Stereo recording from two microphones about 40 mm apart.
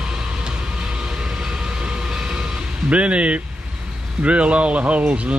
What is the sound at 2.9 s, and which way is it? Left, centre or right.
Speech, right.